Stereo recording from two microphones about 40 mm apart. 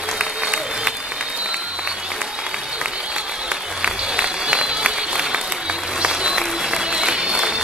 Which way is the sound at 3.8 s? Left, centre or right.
Right.